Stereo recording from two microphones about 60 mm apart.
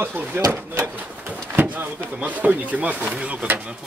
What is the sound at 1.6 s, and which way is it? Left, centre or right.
Speech, right.